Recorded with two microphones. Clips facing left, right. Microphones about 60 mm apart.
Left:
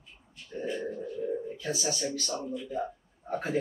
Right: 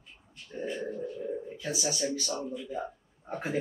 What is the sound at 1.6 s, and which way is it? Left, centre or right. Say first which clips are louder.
Speech: even; centre.